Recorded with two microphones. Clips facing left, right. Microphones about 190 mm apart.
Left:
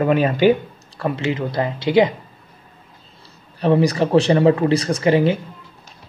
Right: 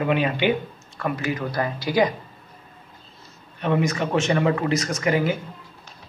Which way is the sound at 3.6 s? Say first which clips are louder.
Left 6 dB; 35° left (ahead or behind).